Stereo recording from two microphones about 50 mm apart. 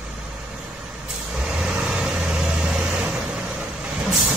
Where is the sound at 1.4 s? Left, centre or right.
Centre.